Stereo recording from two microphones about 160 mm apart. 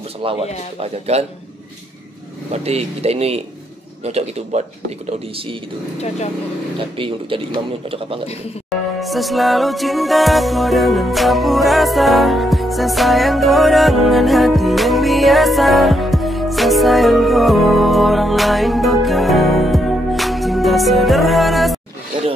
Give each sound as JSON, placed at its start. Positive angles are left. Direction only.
{"t": 0.2, "sound": "a man's voice", "side_deg": -35}
{"t": 2.5, "sound": "a man's voice", "side_deg": -40}
{"t": 7.0, "sound": "a man's voice", "side_deg": -35}
{"t": 9.0, "sound": "music", "side_deg": 0}